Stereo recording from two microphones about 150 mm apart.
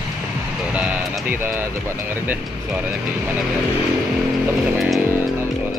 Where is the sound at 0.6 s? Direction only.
10° right (ahead or behind).